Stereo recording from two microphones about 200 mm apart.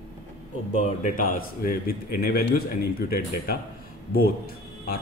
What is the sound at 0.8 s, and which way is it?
A man's voice, 45° left (ahead or behind).